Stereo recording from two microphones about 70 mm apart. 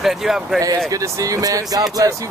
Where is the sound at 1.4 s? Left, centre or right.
Right.